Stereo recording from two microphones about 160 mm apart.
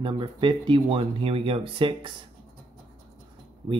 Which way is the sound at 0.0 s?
30° right (ahead or behind).